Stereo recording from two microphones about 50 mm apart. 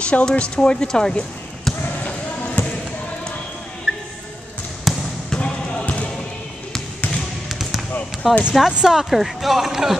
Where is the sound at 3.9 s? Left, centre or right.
Centre.